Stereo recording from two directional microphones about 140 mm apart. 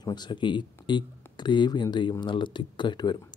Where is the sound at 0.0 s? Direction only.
30° left (ahead or behind).